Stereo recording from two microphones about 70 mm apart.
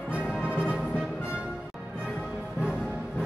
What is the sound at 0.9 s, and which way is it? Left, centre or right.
Music, centre.